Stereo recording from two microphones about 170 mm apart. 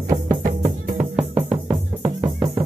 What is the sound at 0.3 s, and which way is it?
Music, 50° right (ahead or behind).